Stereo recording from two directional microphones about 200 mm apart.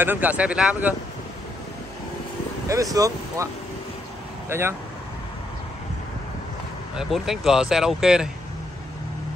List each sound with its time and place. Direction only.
0.0 s speech: 10° right (ahead or behind)
2.7 s speech: 15° right (ahead or behind)
4.5 s speech: 10° right (ahead or behind)
7.0 s speech: centre (ahead or behind)